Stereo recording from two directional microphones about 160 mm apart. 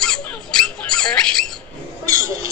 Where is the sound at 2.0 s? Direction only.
20° right (ahead or behind).